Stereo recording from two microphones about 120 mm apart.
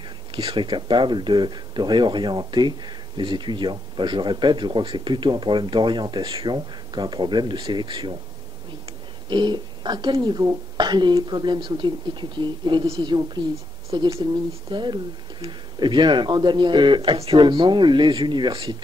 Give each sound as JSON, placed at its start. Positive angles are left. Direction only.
{"t": 0.3, "sound": "speech", "side_deg": -45}
{"t": 9.3, "sound": "speech", "side_deg": -40}
{"t": 13.8, "sound": "speech", "side_deg": -50}